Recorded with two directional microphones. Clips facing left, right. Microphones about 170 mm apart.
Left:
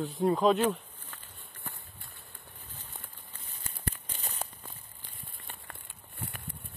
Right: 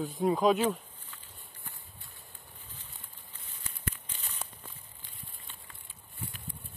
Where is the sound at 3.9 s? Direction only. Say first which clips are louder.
Left 1 dB; 40° left (ahead or behind).